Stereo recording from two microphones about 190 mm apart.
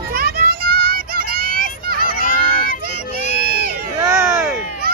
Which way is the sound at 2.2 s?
50° left (ahead or behind).